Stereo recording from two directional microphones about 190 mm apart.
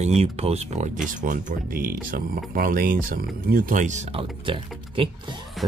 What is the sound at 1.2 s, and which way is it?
Speech, 45° right (ahead or behind).